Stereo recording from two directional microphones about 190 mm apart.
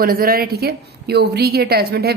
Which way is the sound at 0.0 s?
50° right (ahead or behind).